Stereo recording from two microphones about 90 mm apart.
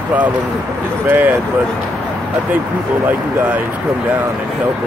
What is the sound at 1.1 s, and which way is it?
Speech, 20° right (ahead or behind).